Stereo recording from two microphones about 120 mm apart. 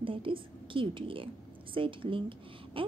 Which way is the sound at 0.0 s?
45° right (ahead or behind).